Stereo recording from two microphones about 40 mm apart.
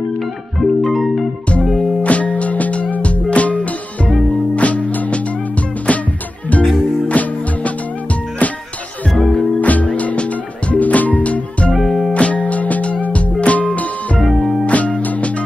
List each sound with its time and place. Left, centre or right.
0.6 s music: centre
2.0 s music: left
7.1 s music: left
9.2 s music: centre
9.6 s music: left
11.7 s music: centre
12.1 s music: left